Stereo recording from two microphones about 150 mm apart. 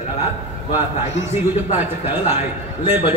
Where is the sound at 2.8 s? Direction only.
15° right (ahead or behind).